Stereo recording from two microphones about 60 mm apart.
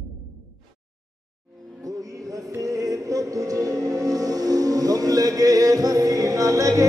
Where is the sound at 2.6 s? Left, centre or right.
Right.